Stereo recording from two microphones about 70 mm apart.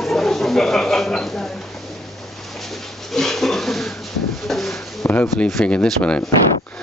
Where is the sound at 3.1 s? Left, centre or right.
Centre.